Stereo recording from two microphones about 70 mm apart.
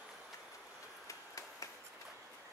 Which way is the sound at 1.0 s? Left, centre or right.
Left.